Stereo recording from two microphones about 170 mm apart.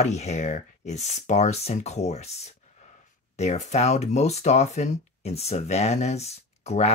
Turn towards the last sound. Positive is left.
turn(degrees=40)  # may be behind; listen again after turning